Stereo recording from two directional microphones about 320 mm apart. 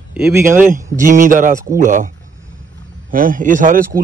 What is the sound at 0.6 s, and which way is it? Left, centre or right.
A man's voice, right.